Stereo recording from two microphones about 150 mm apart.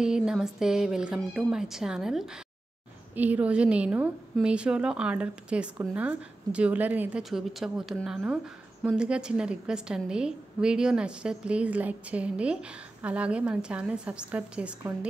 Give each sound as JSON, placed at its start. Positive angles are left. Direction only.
{"t": 0.0, "sound": "a woman's voice", "side_deg": -5}